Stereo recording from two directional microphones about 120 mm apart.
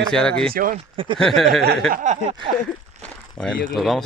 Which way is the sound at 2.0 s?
85° right.